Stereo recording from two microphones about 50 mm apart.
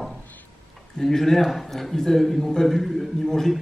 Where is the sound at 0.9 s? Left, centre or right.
Centre.